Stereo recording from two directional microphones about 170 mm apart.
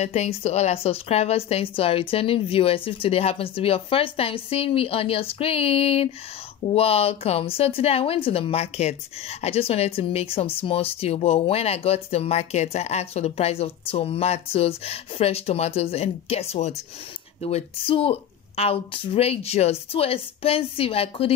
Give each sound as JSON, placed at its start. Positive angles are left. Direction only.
{"t": 0.0, "sound": "speech", "side_deg": 40}